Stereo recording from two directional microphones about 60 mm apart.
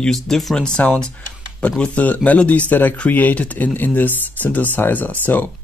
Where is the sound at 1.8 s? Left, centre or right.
Left.